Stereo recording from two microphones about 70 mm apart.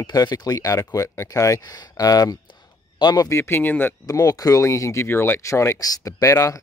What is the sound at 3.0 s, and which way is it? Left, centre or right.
Speech, left.